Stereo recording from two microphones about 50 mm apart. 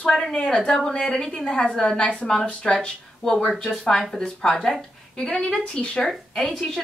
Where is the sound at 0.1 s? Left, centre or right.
Centre.